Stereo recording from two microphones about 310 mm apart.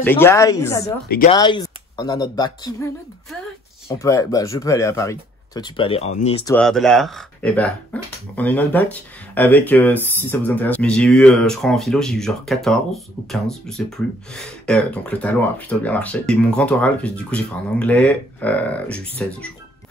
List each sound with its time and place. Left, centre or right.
0.0 s speech: centre
1.0 s speech: left
1.3 s speech: centre
4.0 s speech: centre
6.5 s speech: centre